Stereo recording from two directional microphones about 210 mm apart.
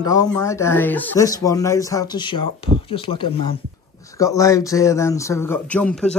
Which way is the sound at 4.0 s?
15° left (ahead or behind).